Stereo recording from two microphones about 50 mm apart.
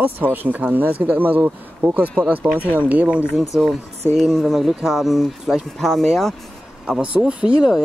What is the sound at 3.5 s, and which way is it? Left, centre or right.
Speech, centre.